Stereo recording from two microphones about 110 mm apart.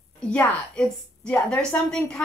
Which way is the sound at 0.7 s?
10° left (ahead or behind).